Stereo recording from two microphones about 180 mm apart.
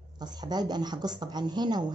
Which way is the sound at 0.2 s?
20° right (ahead or behind).